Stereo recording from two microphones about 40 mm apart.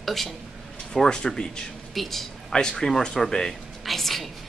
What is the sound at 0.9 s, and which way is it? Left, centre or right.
Speech, centre.